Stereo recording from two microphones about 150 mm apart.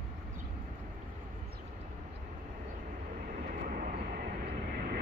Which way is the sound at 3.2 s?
70° right (ahead or behind).